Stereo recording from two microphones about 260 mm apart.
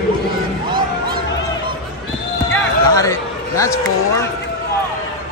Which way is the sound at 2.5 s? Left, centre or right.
Centre.